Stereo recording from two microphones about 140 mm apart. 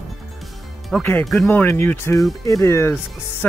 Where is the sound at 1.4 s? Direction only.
15° left (ahead or behind).